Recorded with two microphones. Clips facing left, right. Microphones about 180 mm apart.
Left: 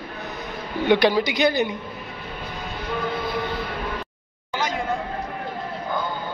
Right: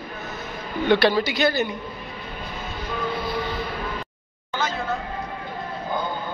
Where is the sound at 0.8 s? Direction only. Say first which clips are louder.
Left 1 dB; 15° left (ahead or behind).